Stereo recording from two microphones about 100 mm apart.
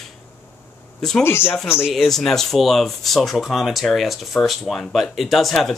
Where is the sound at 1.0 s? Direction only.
5° left (ahead or behind).